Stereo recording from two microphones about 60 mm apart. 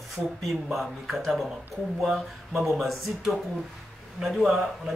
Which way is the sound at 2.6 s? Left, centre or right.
Centre.